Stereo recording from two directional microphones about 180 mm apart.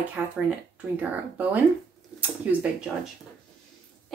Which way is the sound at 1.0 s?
10° right (ahead or behind).